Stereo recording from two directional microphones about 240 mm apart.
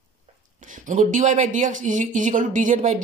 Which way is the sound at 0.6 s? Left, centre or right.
Right.